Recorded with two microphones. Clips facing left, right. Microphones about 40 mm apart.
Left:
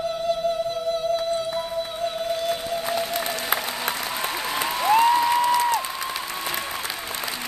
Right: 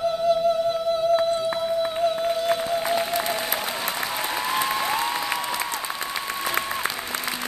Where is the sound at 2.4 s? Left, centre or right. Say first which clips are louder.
Right 3 dB; right.